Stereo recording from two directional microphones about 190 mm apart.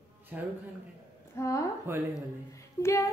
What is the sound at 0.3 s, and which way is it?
Speech, 10° right (ahead or behind).